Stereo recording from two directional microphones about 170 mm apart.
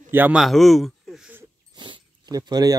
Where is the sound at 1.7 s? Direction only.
25° right (ahead or behind).